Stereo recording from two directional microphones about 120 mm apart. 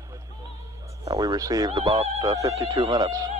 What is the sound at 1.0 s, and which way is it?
Speech, 35° right (ahead or behind).